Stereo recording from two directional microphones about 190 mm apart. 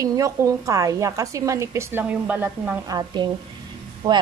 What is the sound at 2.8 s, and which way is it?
A woman's voice, 20° right (ahead or behind).